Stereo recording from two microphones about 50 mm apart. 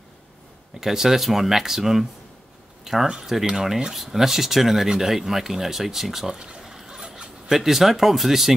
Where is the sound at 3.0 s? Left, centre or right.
Centre.